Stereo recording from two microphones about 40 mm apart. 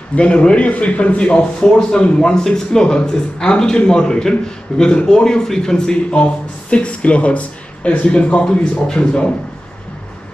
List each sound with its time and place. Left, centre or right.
0.1 s a man's voice: left
6.0 s a man's voice: left